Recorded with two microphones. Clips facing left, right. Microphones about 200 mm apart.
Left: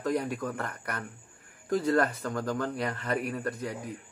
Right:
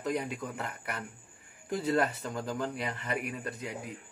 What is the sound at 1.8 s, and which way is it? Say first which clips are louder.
Speech: left 1 dB; 25° right (ahead or behind).